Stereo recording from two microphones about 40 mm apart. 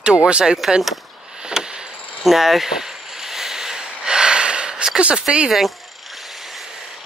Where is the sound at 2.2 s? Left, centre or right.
Centre.